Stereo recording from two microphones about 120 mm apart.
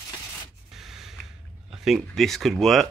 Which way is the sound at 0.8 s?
5° right (ahead or behind).